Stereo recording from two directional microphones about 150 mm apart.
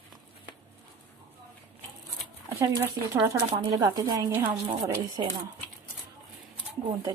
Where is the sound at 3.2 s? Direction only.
30° right (ahead or behind).